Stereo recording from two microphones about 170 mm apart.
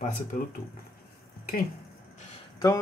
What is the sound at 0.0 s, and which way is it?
Speech, 45° left (ahead or behind).